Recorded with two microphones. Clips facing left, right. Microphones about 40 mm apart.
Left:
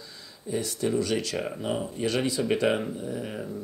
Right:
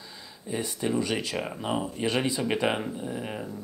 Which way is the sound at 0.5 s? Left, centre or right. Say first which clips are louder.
Left 1 dB; centre.